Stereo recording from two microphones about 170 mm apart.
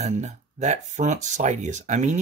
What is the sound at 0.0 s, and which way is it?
Speech, 45° right (ahead or behind).